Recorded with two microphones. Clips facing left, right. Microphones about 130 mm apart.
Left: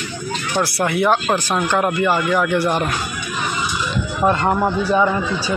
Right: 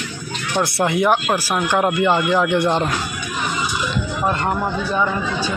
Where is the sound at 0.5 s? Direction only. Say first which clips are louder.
Right 1 dB; 20° right (ahead or behind).